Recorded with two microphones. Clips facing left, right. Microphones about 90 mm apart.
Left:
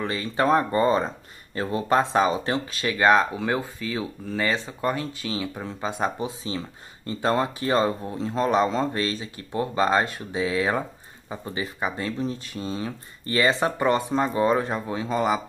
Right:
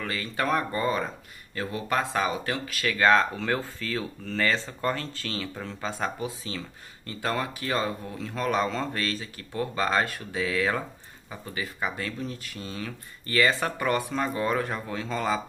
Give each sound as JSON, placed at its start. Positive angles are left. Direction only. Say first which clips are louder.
{"t": 0.0, "sound": "speech", "louder": "left 5 dB", "side_deg": 25}